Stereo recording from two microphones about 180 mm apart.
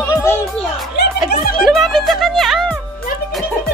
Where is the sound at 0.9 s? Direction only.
65° left (ahead or behind).